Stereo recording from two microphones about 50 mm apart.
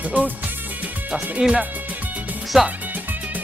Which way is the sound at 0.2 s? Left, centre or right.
Right.